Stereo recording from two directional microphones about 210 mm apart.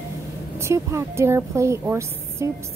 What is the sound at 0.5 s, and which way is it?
A woman's voice, 15° right (ahead or behind).